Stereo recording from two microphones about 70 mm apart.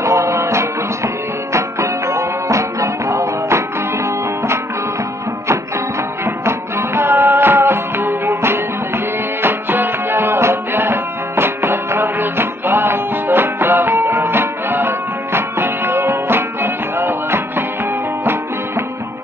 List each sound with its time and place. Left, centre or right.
0.0 s music: right
6.2 s music: right